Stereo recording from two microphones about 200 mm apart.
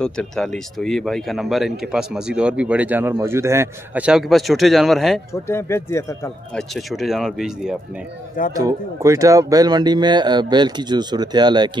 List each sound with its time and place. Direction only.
0.0 s speech: 5° left (ahead or behind)
5.3 s speech: 15° left (ahead or behind)
6.7 s speech: centre (ahead or behind)
8.5 s speech: 15° right (ahead or behind)